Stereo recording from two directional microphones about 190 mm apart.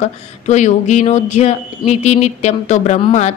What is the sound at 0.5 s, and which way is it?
Speech, 40° left (ahead or behind).